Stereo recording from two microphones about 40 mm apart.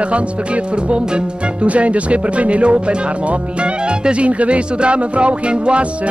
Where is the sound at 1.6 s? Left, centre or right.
Right.